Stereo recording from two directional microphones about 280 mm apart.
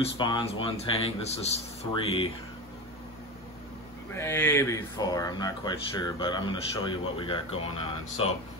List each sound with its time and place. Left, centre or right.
0.0 s a man's voice: centre
4.1 s speech: centre